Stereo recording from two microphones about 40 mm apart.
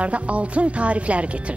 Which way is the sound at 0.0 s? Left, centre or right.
Right.